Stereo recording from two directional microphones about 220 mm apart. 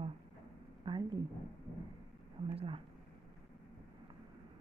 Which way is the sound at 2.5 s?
25° right (ahead or behind).